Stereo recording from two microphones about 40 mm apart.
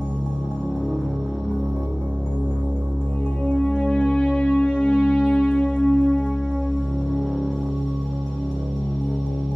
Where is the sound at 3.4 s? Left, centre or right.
Left.